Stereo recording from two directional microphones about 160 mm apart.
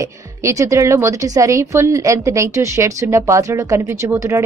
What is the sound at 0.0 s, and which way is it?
A woman's voice, 20° right (ahead or behind).